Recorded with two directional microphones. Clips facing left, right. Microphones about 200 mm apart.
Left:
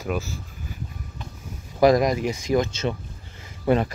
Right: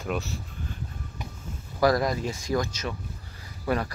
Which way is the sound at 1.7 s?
20° left (ahead or behind).